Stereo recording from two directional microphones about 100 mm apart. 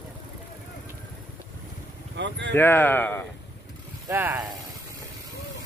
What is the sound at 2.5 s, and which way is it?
Speech, 20° left (ahead or behind).